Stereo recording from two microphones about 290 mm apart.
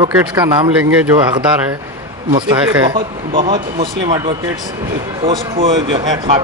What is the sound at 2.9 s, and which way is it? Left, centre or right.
A man's voice, centre.